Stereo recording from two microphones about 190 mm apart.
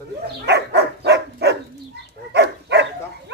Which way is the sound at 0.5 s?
65° right (ahead or behind).